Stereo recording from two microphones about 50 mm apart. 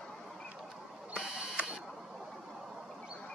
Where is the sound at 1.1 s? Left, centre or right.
Centre.